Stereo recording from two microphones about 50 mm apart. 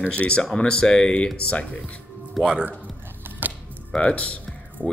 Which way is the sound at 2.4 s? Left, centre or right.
Centre.